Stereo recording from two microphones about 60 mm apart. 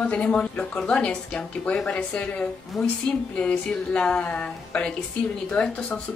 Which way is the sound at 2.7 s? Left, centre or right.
Centre.